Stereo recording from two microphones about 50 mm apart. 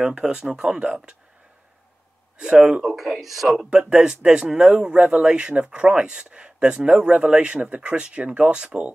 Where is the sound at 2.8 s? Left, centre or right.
Centre.